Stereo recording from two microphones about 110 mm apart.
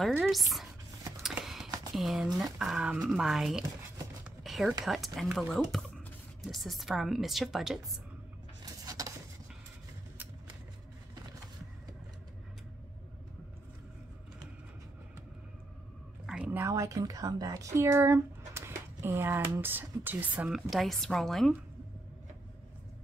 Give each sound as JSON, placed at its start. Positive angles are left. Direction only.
{"t": 0.2, "sound": "a woman's voice", "side_deg": 0}
{"t": 1.2, "sound": "a sound", "side_deg": -5}
{"t": 2.0, "sound": "a woman's voice", "side_deg": -5}
{"t": 4.4, "sound": "a sound", "side_deg": 0}
{"t": 4.8, "sound": "a woman's voice", "side_deg": 0}
{"t": 8.8, "sound": "dishes", "side_deg": -35}
{"t": 16.3, "sound": "a sound", "side_deg": -10}
{"t": 16.5, "sound": "speech", "side_deg": -25}
{"t": 20.4, "sound": "a woman's voice", "side_deg": -5}